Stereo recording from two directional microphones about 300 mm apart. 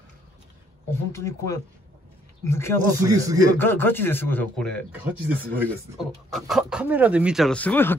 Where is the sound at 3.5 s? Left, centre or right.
Centre.